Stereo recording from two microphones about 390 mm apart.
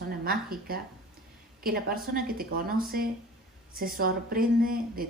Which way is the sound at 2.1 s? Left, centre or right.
Right.